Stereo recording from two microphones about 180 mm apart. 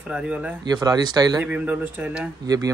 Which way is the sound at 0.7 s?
20° right (ahead or behind).